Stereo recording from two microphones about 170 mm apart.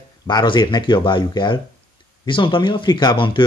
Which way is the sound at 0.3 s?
25° left (ahead or behind).